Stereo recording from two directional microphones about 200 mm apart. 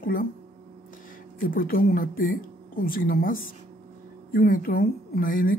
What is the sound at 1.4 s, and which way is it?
Speech, 45° left (ahead or behind).